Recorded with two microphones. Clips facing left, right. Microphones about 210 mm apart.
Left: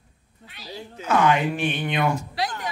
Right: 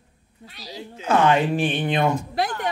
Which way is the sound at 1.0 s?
30° right (ahead or behind).